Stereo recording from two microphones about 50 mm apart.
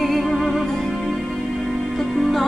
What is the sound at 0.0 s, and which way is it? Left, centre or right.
Music, centre.